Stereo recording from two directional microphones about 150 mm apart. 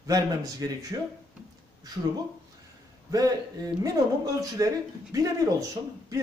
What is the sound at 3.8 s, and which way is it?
Speech, 25° right (ahead or behind).